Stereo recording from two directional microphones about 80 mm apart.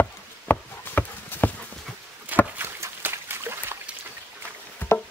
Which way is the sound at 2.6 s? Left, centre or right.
Right.